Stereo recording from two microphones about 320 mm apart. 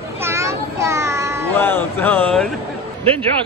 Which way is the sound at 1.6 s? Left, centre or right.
Centre.